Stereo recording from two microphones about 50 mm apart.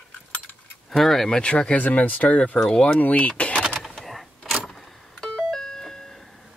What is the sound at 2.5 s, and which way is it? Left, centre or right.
Speech, centre.